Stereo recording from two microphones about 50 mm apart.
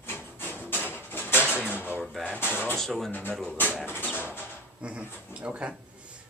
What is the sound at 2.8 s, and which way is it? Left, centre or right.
Speech, centre.